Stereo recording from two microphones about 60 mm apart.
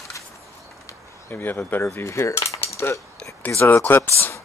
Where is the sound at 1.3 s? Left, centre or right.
Left.